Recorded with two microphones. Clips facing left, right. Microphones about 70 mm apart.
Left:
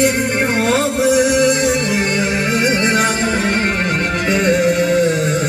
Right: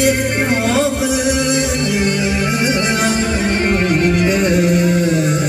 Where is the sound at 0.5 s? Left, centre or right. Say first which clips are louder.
Right 2 dB; left.